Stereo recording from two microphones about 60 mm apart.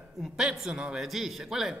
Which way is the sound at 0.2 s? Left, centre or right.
Centre.